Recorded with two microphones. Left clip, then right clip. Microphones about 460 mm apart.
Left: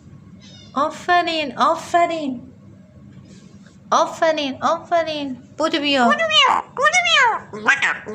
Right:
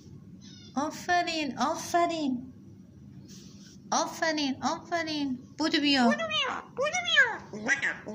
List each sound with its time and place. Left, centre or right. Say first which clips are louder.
0.7 s a woman's voice: left 10 dB; left
3.9 s a woman's voice: left 12 dB; left